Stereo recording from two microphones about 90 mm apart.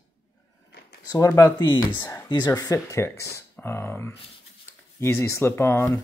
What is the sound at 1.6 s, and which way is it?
Speech, 55° left (ahead or behind).